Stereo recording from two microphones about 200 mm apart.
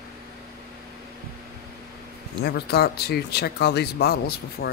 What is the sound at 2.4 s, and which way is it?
Speech, 55° left (ahead or behind).